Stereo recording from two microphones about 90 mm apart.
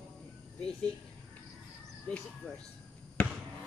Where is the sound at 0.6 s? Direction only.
10° left (ahead or behind).